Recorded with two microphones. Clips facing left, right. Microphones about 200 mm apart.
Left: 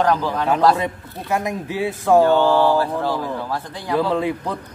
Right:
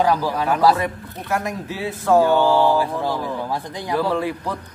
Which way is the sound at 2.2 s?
10° right (ahead or behind).